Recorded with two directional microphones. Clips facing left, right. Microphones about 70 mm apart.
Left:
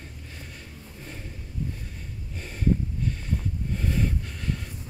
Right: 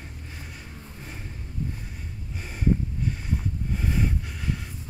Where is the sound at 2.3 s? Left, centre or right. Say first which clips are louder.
Even; centre.